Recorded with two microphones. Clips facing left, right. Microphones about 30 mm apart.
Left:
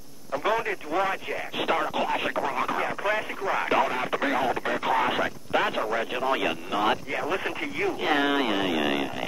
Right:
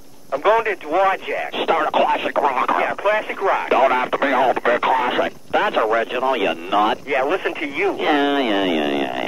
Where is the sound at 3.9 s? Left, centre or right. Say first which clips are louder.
Right 8 dB; centre.